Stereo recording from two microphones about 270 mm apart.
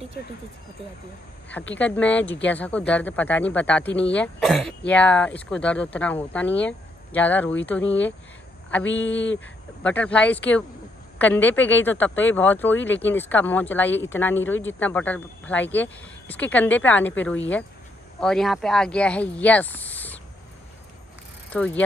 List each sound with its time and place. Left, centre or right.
0.2 s speech: left
1.8 s speech: centre
8.8 s speech: left
9.8 s speech: centre
21.5 s speech: centre